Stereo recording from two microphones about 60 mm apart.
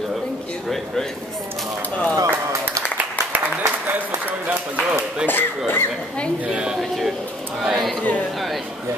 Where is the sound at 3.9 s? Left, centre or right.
Right.